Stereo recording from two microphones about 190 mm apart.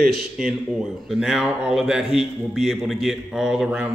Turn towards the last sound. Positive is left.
turn(degrees=-5)  # may be behind; listen again after turning